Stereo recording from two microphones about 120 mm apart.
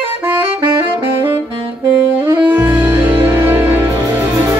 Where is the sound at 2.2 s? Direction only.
15° right (ahead or behind).